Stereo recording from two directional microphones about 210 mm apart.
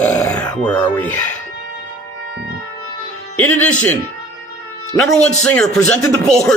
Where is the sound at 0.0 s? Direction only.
5° left (ahead or behind).